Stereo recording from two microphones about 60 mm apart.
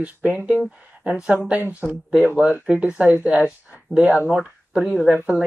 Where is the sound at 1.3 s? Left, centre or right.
Right.